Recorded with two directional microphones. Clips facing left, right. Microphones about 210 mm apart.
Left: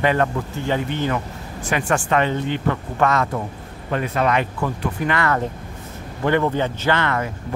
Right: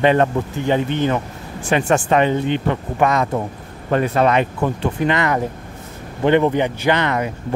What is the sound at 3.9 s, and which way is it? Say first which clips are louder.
Speech: right 5 dB; 35° right (ahead or behind).